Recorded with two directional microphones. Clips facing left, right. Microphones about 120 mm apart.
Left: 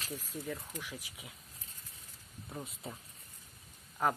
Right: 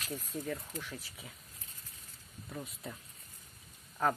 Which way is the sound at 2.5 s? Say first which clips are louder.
Even; 25° left (ahead or behind).